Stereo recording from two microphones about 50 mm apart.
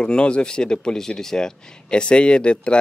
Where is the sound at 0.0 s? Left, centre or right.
Centre.